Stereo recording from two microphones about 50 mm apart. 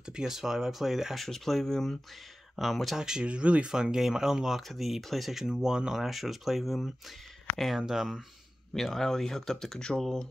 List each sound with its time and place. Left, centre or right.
0.0 s speech: centre
1.2 s speech: centre
3.0 s speech: centre
3.7 s speech: centre
8.9 s speech: centre